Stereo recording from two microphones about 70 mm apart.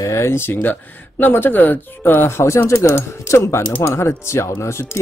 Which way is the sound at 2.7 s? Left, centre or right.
Left.